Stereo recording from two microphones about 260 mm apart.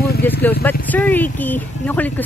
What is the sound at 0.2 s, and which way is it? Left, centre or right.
Speech, centre.